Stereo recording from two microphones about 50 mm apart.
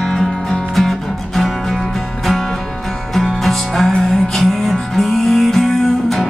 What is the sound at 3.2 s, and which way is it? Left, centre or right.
Music, centre.